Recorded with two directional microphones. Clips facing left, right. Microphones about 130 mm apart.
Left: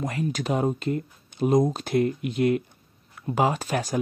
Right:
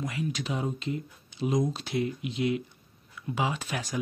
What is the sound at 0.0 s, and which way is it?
Speech, 45° left (ahead or behind).